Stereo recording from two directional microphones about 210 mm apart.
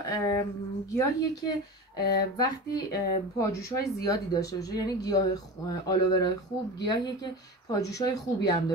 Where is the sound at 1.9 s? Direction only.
20° left (ahead or behind).